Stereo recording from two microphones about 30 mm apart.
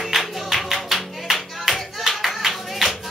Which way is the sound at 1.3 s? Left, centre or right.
Centre.